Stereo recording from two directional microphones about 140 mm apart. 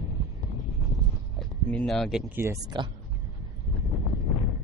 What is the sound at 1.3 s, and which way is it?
Speech, centre (ahead or behind).